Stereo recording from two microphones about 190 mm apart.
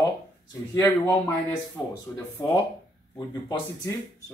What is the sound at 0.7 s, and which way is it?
Speech, 15° left (ahead or behind).